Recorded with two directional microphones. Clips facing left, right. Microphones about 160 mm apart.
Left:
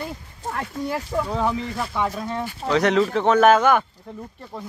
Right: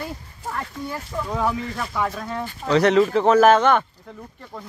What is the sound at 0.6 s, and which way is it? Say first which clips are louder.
Speech: left 4 dB; 70° left (ahead or behind).